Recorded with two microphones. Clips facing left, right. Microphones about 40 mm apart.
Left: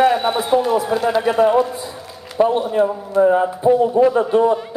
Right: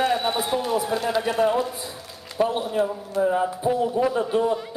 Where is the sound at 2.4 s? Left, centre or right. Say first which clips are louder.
Left 7 dB; centre.